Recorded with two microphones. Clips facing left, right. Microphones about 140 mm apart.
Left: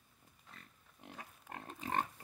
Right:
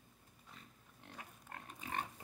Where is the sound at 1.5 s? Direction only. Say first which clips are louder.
Left 6 dB; 30° left (ahead or behind).